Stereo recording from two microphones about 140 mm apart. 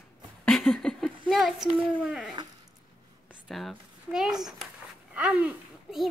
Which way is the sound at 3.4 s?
Centre (ahead or behind).